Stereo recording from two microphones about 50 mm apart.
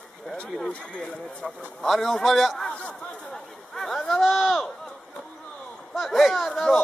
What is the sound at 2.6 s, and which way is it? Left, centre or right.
Speech, left.